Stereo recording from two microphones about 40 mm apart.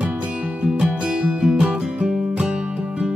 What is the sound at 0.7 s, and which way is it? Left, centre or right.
Music, right.